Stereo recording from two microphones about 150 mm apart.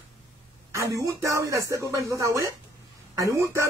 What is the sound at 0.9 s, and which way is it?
Speech, 20° right (ahead or behind).